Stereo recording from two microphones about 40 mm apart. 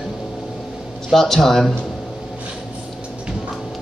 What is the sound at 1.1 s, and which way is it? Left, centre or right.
Speech, centre.